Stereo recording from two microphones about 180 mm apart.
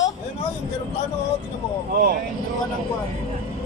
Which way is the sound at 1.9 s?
50° right (ahead or behind).